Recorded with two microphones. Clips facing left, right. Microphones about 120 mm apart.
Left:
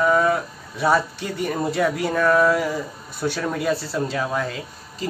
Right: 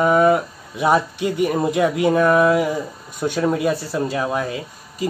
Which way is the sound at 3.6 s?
15° right (ahead or behind).